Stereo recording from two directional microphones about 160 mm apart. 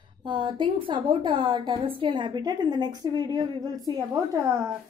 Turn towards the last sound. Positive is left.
turn(degrees=-20)  # may be behind; listen again after turning